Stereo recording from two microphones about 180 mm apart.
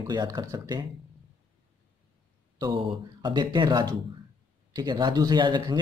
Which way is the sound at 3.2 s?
25° right (ahead or behind).